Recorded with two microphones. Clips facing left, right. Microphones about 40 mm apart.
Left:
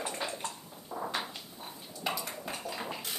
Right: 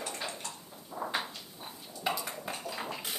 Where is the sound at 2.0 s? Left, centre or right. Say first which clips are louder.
Right 1 dB; centre.